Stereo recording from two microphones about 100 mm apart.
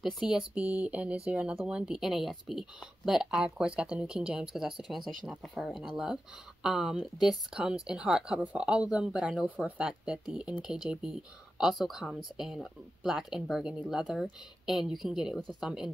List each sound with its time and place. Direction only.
0.0 s speech: 5° right (ahead or behind)